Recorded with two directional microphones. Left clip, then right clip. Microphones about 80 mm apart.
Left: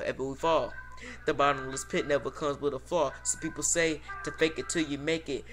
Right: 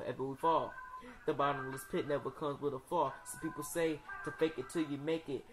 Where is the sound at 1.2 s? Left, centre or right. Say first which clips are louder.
Left 8 dB; right.